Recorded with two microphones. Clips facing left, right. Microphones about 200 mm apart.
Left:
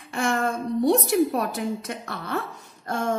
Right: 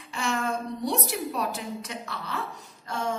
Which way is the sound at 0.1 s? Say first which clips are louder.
Left 4 dB; 50° left (ahead or behind).